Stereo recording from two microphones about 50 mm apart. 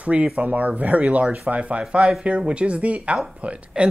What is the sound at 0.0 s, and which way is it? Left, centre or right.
Speech, right.